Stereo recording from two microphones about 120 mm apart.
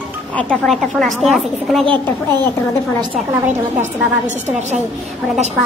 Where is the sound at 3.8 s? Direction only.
80° right.